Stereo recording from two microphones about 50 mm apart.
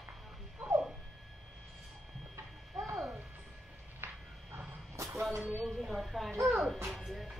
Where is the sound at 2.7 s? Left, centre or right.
Right.